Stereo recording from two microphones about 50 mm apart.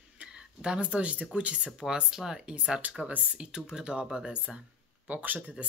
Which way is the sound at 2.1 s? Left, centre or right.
Centre.